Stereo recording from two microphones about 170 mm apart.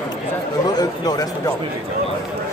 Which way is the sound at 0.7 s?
20° left (ahead or behind).